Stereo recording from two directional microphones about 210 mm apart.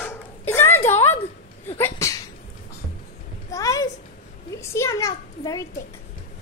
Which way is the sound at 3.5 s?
15° left (ahead or behind).